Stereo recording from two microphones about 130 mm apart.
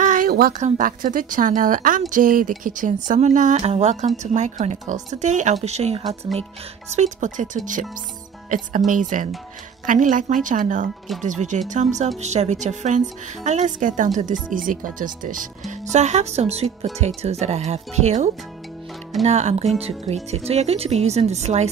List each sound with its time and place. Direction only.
0.0 s a woman's voice: 85° right; by 6.1 s 55° right (ahead or behind)
6.9 s a woman's voice: 65° right (ahead or behind)
11.2 s speech: 65° right (ahead or behind)